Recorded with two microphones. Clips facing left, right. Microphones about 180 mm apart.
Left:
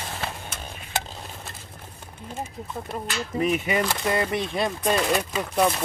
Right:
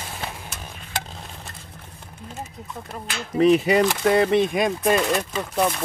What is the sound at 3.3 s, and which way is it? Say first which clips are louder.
Speech: right 8 dB; 30° right (ahead or behind).